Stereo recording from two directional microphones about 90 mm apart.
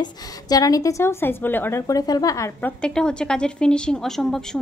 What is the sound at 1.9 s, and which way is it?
Speech, 45° left (ahead or behind).